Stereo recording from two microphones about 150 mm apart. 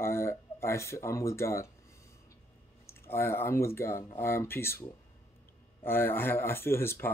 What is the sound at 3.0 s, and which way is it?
Speech, 15° left (ahead or behind).